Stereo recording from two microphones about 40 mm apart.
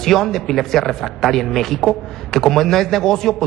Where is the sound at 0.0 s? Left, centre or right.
Centre.